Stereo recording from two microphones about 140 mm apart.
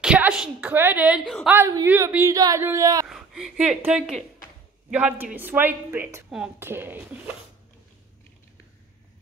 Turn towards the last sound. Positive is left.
turn(degrees=-15)  # may be behind; listen again after turning